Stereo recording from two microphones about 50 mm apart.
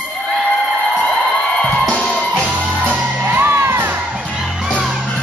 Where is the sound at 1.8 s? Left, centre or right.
Left.